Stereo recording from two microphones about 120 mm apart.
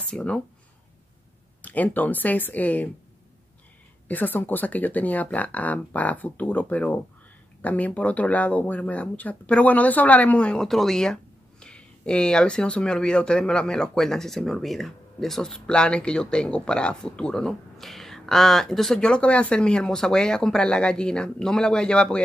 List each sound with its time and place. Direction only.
0.1 s speech: 10° left (ahead or behind)
1.6 s speech: 15° left (ahead or behind)
4.1 s speech: 15° left (ahead or behind)